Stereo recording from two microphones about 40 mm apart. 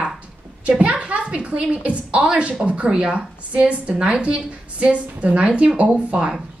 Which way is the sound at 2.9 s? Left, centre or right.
Centre.